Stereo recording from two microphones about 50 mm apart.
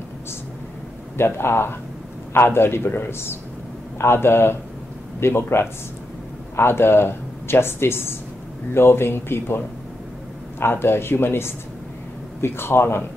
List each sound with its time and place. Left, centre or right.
1.1 s a man's voice: left
10.6 s a man's voice: left